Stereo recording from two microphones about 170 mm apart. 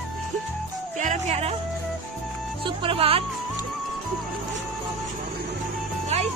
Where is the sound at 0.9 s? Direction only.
45° right (ahead or behind).